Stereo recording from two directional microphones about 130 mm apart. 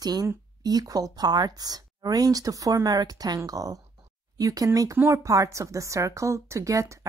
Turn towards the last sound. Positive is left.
turn(degrees=-25)  # may be behind; listen again after turning